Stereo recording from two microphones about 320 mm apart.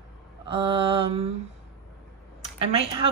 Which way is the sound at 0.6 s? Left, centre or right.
Centre.